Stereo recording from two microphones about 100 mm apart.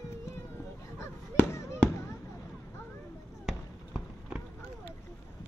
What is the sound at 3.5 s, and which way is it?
Basketball bounce, 5° right (ahead or behind).